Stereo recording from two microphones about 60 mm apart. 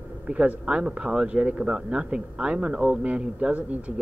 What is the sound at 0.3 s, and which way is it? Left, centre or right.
Speech, centre.